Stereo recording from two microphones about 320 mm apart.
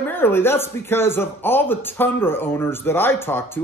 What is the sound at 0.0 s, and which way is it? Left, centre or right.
Speech, centre.